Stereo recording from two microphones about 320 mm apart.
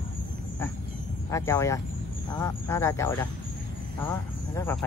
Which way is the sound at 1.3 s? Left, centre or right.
Centre.